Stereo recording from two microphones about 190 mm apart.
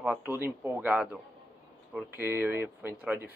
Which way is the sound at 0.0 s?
10° right (ahead or behind).